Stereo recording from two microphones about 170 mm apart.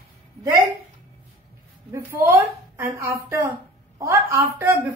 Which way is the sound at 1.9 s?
15° right (ahead or behind).